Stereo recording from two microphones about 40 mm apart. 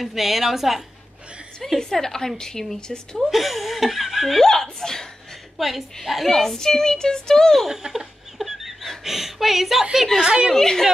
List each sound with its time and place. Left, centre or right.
0.0 s speech: centre
1.8 s speech: centre
3.2 s speech: centre
4.4 s speech: centre
5.6 s speech: centre
7.5 s speech: centre
7.8 s a sound: centre
9.0 s speech: centre
10.2 s a woman's voice: centre
10.5 s speech: centre